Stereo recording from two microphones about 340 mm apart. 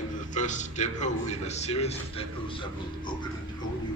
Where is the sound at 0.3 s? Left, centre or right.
Left.